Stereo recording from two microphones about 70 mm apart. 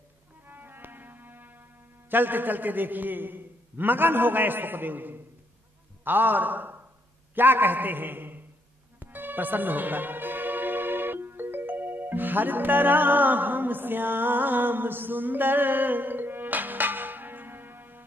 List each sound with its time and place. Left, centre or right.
0.5 s music: right
6.0 s a man's voice: right
9.0 s music: right